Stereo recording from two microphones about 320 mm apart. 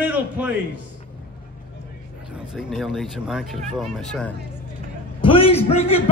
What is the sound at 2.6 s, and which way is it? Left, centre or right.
Speech, centre.